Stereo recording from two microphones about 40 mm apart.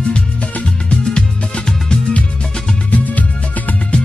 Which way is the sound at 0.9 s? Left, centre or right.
Left.